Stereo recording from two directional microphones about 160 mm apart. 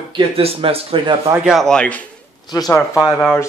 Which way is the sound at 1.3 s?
5° right (ahead or behind).